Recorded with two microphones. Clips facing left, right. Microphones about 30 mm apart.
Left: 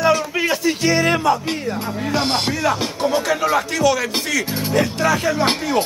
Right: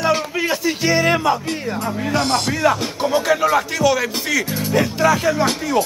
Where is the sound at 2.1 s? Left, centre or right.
Left.